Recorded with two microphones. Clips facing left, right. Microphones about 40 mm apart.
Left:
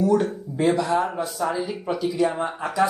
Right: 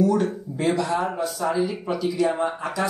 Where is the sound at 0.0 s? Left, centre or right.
Centre.